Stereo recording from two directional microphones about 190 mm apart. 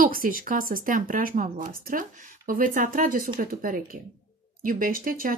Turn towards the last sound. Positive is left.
turn(degrees=-50)  # may be behind; listen again after turning